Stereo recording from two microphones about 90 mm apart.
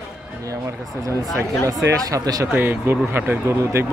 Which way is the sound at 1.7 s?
40° right (ahead or behind).